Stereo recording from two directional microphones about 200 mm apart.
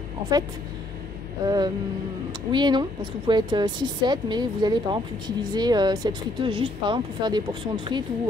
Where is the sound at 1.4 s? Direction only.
20° right (ahead or behind).